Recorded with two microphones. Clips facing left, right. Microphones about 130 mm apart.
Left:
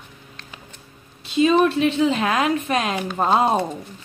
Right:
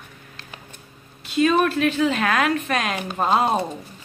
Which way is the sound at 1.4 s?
25° left (ahead or behind).